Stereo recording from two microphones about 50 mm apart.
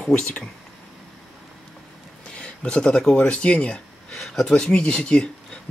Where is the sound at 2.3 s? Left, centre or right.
Left.